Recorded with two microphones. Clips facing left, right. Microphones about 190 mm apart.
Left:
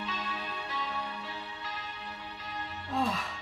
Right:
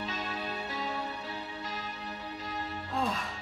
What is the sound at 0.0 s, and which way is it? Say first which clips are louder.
Music: right 2 dB; 40° right (ahead or behind).